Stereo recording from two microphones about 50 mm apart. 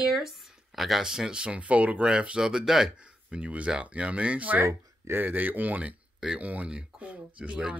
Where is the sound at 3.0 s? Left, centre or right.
Right.